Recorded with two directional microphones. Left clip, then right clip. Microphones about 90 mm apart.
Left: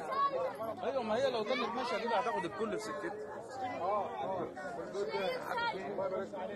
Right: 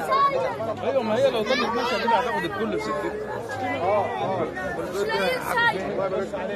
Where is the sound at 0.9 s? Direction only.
90° left.